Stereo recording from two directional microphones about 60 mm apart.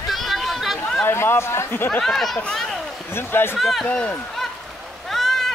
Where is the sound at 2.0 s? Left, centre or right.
Centre.